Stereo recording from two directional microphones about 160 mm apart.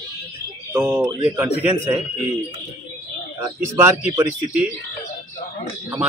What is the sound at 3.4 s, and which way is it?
Speech, 20° right (ahead or behind).